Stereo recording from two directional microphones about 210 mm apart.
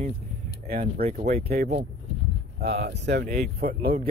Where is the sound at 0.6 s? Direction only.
45° right (ahead or behind).